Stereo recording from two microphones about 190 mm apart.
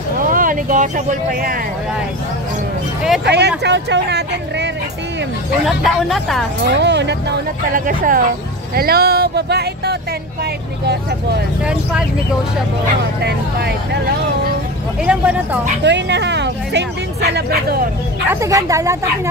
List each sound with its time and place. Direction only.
0.3 s speech: 45° right (ahead or behind)
3.3 s speech: 60° right (ahead or behind)
5.7 s speech: centre (ahead or behind)
6.7 s speech: 65° right (ahead or behind)
7.7 s speech: 45° right (ahead or behind)
13.2 s speech: 60° right (ahead or behind)
15.0 s speech: 5° right (ahead or behind)
15.8 s speech: 65° right (ahead or behind)
18.3 s speech: 15° right (ahead or behind)